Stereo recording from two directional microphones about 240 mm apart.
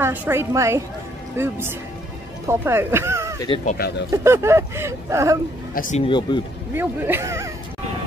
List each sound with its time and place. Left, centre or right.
0.0 s speech: centre
3.4 s speech: left
4.1 s speech: centre
5.8 s a man's voice: left
6.0 s speech: centre
6.7 s speech: centre